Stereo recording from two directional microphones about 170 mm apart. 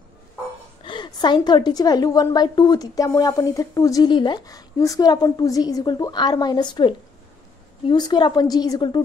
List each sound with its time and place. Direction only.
0.8 s a woman's voice: 25° left (ahead or behind)